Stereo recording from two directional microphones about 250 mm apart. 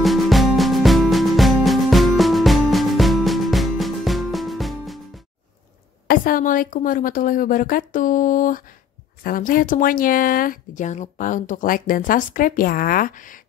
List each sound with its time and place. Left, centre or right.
0.0 s music: centre
6.0 s speech: left